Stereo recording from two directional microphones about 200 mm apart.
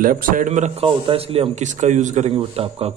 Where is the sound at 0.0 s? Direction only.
45° right (ahead or behind).